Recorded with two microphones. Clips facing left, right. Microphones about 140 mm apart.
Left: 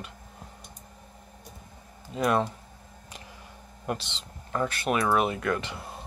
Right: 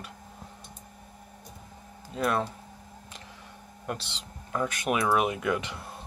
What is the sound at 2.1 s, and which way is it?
Speech, centre (ahead or behind).